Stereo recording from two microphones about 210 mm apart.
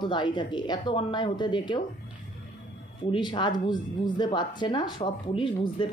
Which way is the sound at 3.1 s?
20° left (ahead or behind).